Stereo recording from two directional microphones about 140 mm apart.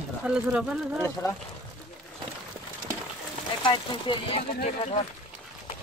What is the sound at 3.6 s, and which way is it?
Speech, 35° left (ahead or behind).